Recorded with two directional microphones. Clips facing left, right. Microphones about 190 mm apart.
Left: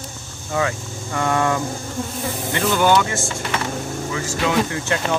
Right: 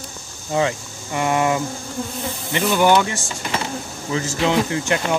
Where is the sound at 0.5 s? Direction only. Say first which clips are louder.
Right 2 dB; 25° right (ahead or behind).